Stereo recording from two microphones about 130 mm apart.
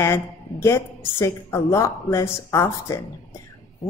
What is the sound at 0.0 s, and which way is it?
A woman's voice, 20° left (ahead or behind).